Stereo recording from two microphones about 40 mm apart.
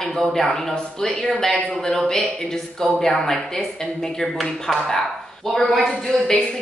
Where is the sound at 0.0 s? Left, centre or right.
Centre; by 1.8 s left.